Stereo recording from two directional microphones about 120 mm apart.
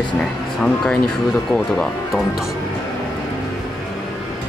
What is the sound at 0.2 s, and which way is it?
Speech, 5° left (ahead or behind).